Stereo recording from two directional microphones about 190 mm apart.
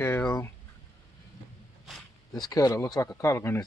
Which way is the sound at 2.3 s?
20° left (ahead or behind).